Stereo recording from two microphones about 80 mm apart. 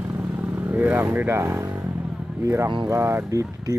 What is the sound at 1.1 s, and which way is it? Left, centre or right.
Speech, right.